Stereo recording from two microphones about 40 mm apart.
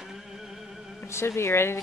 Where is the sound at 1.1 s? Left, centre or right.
Left.